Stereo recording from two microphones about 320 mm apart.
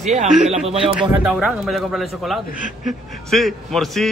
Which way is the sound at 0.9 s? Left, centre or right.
Centre.